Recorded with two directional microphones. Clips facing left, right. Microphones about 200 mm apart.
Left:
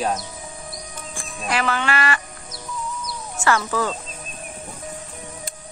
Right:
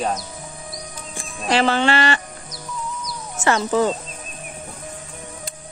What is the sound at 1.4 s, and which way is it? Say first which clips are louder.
Jingle bell: right 5 dB; 30° right (ahead or behind).